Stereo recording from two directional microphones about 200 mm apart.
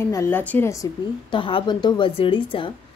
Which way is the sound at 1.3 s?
25° left (ahead or behind).